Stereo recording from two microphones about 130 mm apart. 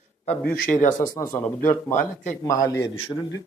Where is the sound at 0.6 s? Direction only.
75° left (ahead or behind).